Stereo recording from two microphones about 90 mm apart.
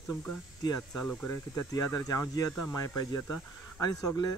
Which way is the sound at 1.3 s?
35° left (ahead or behind).